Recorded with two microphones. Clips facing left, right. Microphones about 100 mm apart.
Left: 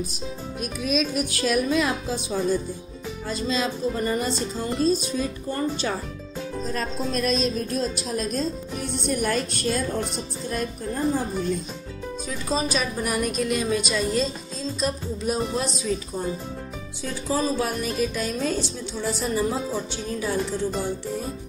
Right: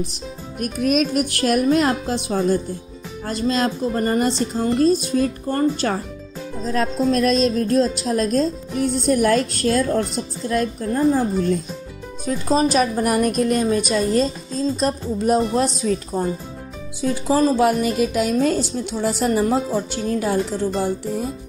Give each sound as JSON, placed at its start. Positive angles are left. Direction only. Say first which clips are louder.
{"t": 0.6, "sound": "music", "louder": "right 6 dB", "side_deg": -60}
{"t": 6.6, "sound": "speech", "louder": "right 9 dB", "side_deg": -75}
{"t": 9.0, "sound": "speech", "louder": "right 7 dB", "side_deg": -70}
{"t": 12.7, "sound": "a woman's voice", "louder": "right 8 dB", "side_deg": -50}
{"t": 17.0, "sound": "speech", "louder": "right 8 dB", "side_deg": -90}
{"t": 18.9, "sound": "speech", "louder": "right 6 dB", "side_deg": -70}